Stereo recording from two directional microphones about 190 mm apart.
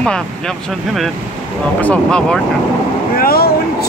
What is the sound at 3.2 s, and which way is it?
Speech, 50° left (ahead or behind).